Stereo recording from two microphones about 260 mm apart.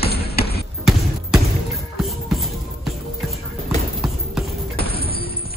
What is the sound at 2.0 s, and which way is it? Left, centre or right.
Music, centre.